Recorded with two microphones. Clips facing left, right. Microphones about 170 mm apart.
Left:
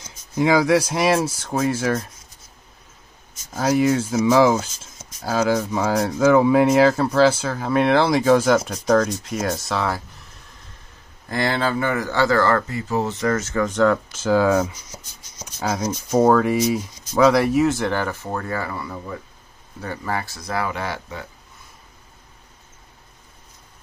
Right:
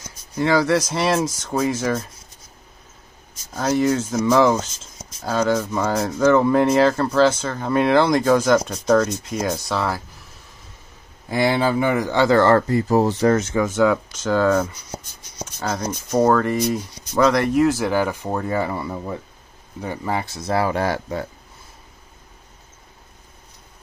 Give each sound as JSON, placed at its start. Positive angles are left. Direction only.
{"t": 0.4, "sound": "speech", "side_deg": 10}
{"t": 3.5, "sound": "speech", "side_deg": 5}
{"t": 11.2, "sound": "speech", "side_deg": -10}
{"t": 13.4, "sound": "speech", "side_deg": -20}
{"t": 13.7, "sound": "speech", "side_deg": -5}
{"t": 14.7, "sound": "writing", "side_deg": -60}
{"t": 15.4, "sound": "speech", "side_deg": 10}